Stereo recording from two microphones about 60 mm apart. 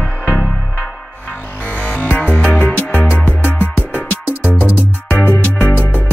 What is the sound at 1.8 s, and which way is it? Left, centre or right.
Music, left.